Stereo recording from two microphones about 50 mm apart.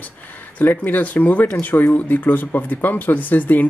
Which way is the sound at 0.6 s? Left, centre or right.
Left.